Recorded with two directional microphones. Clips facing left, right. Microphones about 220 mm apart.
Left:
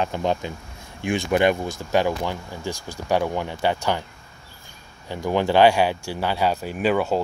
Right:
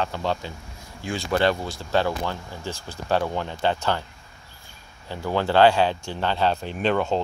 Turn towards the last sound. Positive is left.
turn(degrees=5)  # may be behind; listen again after turning